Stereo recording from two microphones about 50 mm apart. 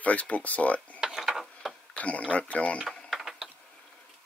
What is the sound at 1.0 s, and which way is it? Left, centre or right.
Tick-tock, centre.